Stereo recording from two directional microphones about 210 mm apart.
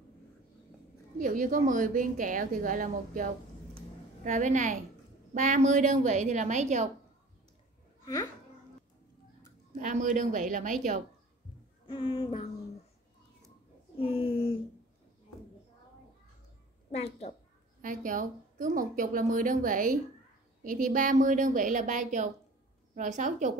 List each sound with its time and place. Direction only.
1.2 s a woman's voice: 40° right (ahead or behind)
3.7 s a sound: 35° right (ahead or behind)
5.3 s a woman's voice: 35° right (ahead or behind)
8.0 s speech: 15° left (ahead or behind)
9.8 s a woman's voice: 35° right (ahead or behind)
11.9 s a sound: 25° left (ahead or behind)
13.9 s a sound: 25° left (ahead or behind)
16.9 s a woman's voice: 30° left (ahead or behind)
17.8 s a woman's voice: 40° right (ahead or behind)